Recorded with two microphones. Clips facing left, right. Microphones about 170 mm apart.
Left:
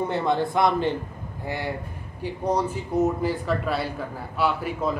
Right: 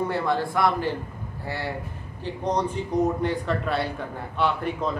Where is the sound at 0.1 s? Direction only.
20° left (ahead or behind).